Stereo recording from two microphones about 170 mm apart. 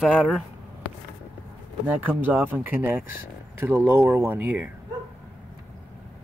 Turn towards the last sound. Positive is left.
turn(degrees=-10)  # may be behind; listen again after turning